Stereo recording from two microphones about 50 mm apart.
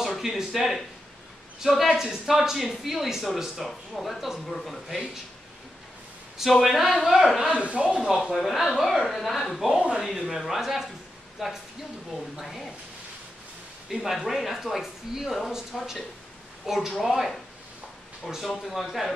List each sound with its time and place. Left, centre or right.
0.0 s speech: centre
6.3 s speech: centre
7.5 s speech: right
8.0 s speech: centre
9.8 s speech: centre
10.0 s speech: centre
13.8 s speech: centre
18.3 s speech: centre